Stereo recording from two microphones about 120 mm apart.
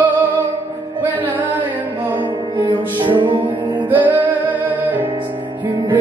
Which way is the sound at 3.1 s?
40° right (ahead or behind).